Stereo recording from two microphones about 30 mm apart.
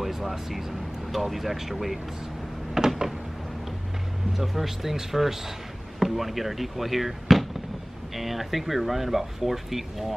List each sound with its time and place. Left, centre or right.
0.0 s speech: centre
2.8 s a sound: right
4.3 s speech: centre